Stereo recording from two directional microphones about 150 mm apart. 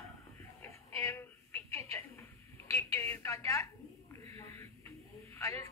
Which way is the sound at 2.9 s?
15° left (ahead or behind).